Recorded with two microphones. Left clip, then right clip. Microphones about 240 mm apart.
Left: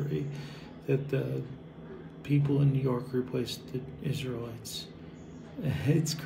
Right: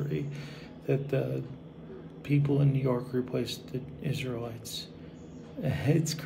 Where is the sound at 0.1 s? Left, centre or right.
Right.